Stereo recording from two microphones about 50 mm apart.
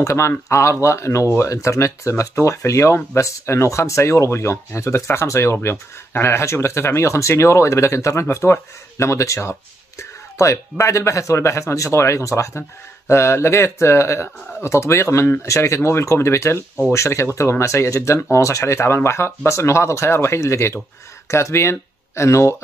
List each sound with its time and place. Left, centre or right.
0.0 s speech: left
13.1 s speech: left
15.4 s speech: left